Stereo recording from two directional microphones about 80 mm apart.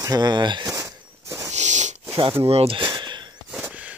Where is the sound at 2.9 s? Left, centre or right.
Right.